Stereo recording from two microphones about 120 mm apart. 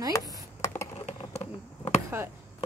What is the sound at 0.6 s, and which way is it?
Computer keyboard, 25° left (ahead or behind).